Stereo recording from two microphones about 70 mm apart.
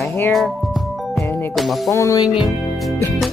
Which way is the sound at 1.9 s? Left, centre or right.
Left.